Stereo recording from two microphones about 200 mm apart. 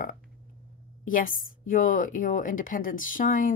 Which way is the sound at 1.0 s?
45° left (ahead or behind).